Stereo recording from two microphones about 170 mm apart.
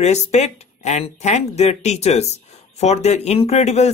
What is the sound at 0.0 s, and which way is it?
Speech, 40° left (ahead or behind).